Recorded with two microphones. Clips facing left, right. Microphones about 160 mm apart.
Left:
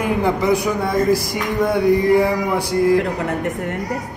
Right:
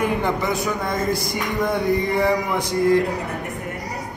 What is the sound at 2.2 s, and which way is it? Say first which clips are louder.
Speech: left 2 dB; 5° left (ahead or behind).